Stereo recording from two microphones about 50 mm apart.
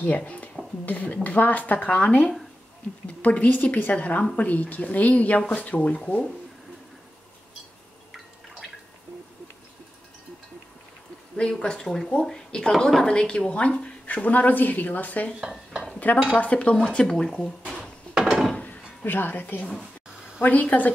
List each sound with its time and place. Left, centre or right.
0.0 s a woman's voice: left
8.1 s drip: centre
11.8 s speech: centre; by 15.3 s left
15.5 s dishes: centre
15.9 s dishes: left
16.3 s a woman's voice: left
16.7 s speech: centre
18.1 s wood: centre
18.6 s music: left
20.4 s speech: left